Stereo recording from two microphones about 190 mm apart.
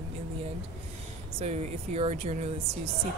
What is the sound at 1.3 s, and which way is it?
Speech, 35° right (ahead or behind).